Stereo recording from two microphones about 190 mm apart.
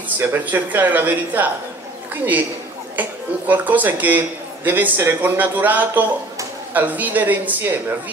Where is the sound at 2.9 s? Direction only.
10° right (ahead or behind).